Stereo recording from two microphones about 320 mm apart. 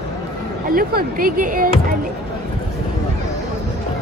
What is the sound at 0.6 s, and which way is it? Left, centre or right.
Speech, right.